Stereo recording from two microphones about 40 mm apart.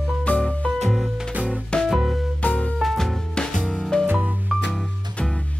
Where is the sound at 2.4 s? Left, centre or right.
Left.